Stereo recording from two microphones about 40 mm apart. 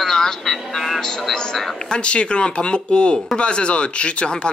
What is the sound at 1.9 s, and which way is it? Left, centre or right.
Speech, left.